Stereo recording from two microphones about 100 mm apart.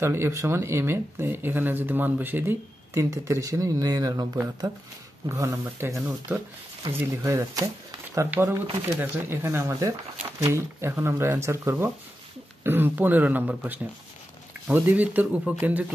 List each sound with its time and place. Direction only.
0.0 s speech: 25° right (ahead or behind)
5.3 s speech: 30° right (ahead or behind)
7.2 s speech: 35° right (ahead or behind)
8.3 s speech: 25° right (ahead or behind)